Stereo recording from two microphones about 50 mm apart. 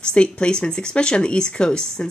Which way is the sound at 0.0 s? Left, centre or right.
Centre.